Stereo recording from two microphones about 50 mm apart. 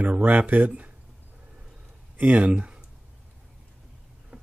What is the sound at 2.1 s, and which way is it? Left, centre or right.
Speech, right.